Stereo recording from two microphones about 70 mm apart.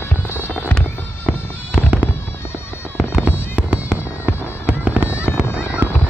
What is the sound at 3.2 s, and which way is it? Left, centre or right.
Fireworks, centre.